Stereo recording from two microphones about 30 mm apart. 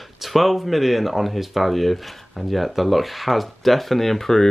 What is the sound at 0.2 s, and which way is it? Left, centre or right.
Speech, centre.